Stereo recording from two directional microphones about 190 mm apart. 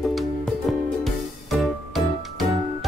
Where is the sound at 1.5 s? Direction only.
Centre (ahead or behind).